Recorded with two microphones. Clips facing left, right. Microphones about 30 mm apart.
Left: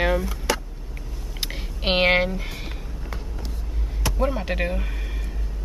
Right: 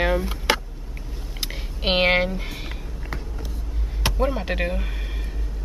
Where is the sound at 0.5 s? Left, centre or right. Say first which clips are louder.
Right 3 dB; right.